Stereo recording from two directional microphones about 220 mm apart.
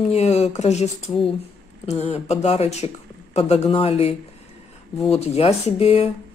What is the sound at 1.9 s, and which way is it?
Speech, 30° left (ahead or behind).